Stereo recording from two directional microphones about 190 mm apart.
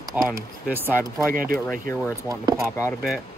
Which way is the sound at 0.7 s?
10° right (ahead or behind).